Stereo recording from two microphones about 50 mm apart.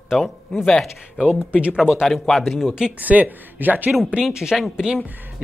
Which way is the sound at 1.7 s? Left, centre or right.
Centre.